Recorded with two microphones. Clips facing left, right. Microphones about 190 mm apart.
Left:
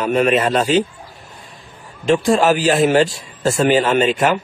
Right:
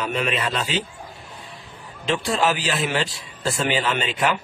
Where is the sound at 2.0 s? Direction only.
45° left (ahead or behind).